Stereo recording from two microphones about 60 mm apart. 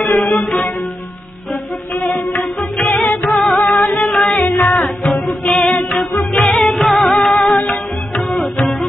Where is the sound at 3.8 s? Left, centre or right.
Left.